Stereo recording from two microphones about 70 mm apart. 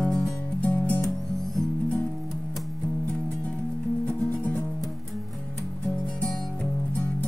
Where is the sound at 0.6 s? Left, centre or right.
Left.